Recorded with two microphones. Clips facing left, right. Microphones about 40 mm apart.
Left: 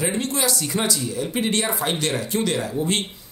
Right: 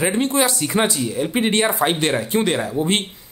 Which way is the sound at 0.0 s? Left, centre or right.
Right.